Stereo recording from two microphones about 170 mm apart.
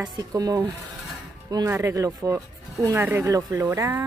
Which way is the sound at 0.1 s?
20° right (ahead or behind).